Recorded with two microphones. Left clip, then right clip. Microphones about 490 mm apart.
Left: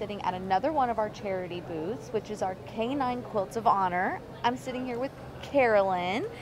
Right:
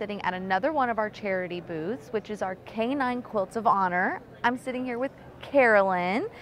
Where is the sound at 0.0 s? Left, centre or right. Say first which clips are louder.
Right 2 dB; right.